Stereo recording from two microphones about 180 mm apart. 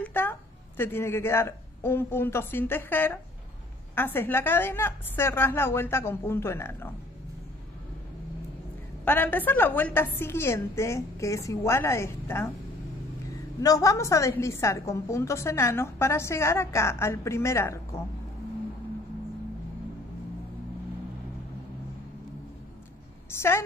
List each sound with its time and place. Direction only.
0.0 s a woman's voice: 10° left (ahead or behind)
9.0 s a woman's voice: 10° left (ahead or behind)
13.6 s a woman's voice: 20° left (ahead or behind)